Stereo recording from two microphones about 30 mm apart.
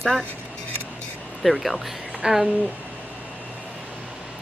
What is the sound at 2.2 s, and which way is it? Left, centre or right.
Speech, right.